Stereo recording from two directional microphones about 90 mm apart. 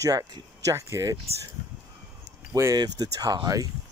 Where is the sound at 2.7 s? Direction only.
45° right (ahead or behind).